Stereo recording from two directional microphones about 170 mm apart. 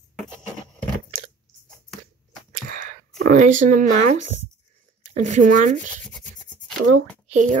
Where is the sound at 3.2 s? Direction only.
50° right (ahead or behind).